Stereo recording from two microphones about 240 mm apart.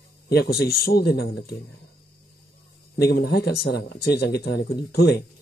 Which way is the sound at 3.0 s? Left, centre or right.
Left.